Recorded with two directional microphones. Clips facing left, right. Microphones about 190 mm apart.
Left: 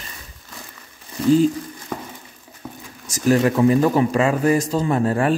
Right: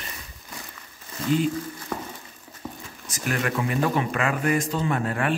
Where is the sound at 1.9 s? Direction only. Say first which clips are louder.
Left 2 dB; 10° left (ahead or behind).